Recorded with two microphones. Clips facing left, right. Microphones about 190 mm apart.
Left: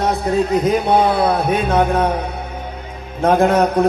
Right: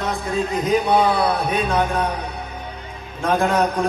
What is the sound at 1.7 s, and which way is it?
Speech, 50° left (ahead or behind).